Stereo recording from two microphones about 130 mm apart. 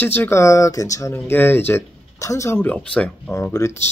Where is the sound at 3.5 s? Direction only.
20° left (ahead or behind).